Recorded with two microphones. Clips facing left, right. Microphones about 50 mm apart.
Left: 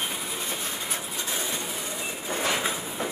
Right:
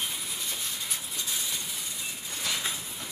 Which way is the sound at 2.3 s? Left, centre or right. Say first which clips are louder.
Left 7 dB; left.